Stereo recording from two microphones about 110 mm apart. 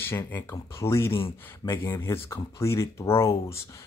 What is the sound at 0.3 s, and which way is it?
Speech, 25° left (ahead or behind).